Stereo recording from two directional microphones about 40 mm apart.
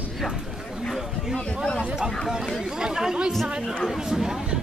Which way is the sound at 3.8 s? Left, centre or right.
Centre.